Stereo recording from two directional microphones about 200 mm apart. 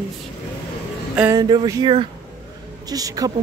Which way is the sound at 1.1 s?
10° right (ahead or behind).